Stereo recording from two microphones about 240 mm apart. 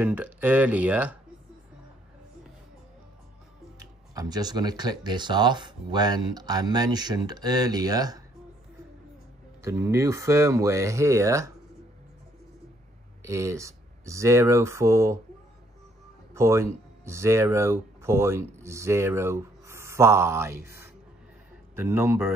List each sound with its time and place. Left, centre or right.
0.0 s speech: centre
3.8 s speech: centre
9.6 s speech: centre
13.2 s speech: centre
16.3 s speech: centre